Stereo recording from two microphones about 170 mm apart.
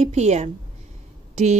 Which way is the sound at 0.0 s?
40° right (ahead or behind).